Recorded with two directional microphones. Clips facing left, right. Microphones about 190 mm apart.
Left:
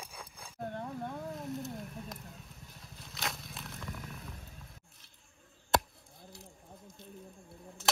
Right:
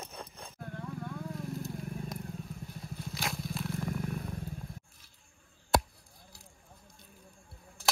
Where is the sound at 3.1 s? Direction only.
Centre (ahead or behind).